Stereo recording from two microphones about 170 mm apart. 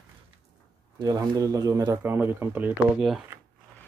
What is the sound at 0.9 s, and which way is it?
Speech, 20° right (ahead or behind).